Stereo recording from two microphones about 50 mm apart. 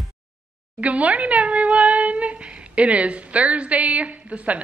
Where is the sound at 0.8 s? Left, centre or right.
Right.